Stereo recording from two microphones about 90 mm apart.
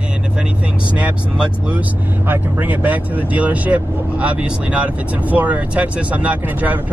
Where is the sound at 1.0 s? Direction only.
15° right (ahead or behind).